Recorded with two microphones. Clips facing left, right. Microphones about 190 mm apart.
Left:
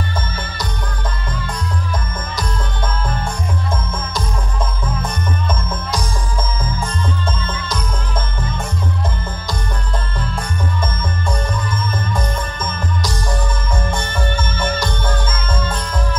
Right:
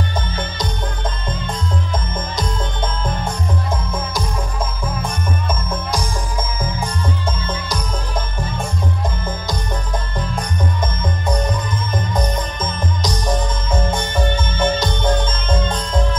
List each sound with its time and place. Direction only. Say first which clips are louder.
1.3 s music: right 1 dB; 20° right (ahead or behind)
5.0 s music: even; 10° right (ahead or behind)
11.0 s music: right 2 dB; 20° right (ahead or behind)